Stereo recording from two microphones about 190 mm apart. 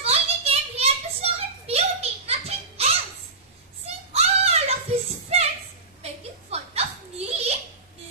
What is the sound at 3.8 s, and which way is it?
Child singing, 35° right (ahead or behind).